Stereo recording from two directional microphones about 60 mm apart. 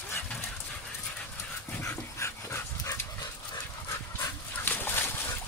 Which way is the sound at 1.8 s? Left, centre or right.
Left.